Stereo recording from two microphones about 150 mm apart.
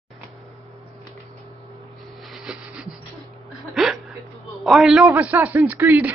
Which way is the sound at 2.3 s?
5° right (ahead or behind).